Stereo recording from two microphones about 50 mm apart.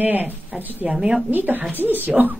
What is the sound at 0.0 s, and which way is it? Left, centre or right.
A woman's voice, right.